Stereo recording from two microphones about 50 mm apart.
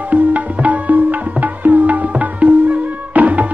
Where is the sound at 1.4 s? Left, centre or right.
Right.